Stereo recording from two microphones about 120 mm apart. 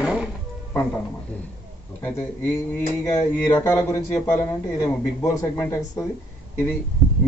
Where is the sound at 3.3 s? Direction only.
20° left (ahead or behind).